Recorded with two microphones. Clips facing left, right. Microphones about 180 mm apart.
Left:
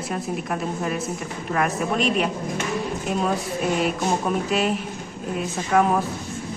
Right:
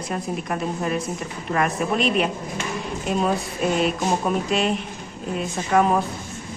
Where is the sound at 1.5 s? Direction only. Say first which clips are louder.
Right 1 dB; centre (ahead or behind).